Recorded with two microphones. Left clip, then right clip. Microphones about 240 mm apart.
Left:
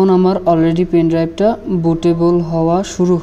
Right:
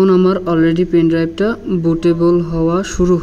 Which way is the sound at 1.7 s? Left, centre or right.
Left.